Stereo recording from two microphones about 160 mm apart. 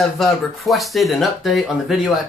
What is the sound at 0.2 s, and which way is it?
Speech, centre (ahead or behind).